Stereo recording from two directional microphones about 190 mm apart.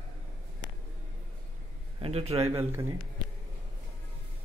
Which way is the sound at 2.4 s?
15° right (ahead or behind).